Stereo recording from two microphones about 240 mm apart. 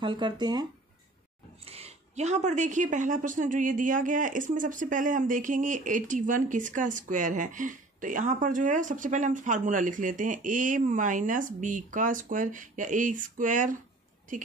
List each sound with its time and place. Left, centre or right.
0.0 s speech: centre